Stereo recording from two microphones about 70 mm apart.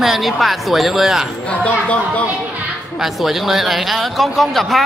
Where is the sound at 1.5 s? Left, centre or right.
Centre.